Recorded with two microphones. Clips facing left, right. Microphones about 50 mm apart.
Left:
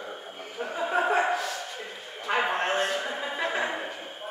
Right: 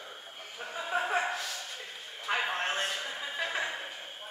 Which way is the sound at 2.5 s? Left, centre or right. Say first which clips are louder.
Left 6 dB; centre.